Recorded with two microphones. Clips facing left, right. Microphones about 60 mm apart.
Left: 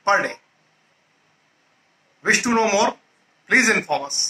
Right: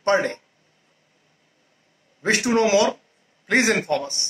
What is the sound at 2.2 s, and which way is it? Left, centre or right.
A man's voice, left.